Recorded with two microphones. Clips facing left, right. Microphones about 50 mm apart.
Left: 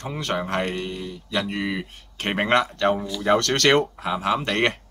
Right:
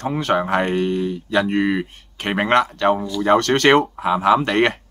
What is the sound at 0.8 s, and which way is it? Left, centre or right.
Speech, right.